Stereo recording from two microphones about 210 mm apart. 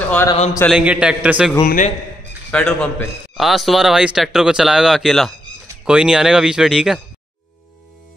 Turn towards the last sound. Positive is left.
turn(degrees=0)  # may be behind; listen again after turning